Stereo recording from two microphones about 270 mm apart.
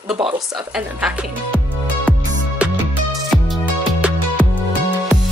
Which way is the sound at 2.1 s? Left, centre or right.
Centre.